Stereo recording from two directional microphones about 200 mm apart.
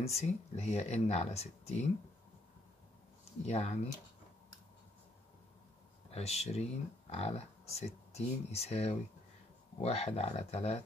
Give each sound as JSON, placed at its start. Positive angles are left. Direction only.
{"t": 0.0, "sound": "speech", "side_deg": 30}
{"t": 3.4, "sound": "speech", "side_deg": 35}
{"t": 6.1, "sound": "speech", "side_deg": 30}